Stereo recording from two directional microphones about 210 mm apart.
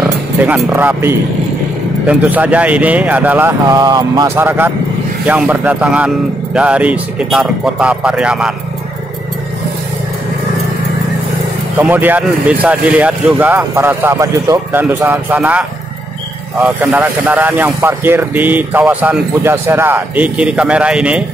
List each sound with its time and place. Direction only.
0.5 s speech: 10° right (ahead or behind)
3.6 s speech: 20° right (ahead or behind); by 8.5 s 5° right (ahead or behind)
11.8 s speech: 10° right (ahead or behind)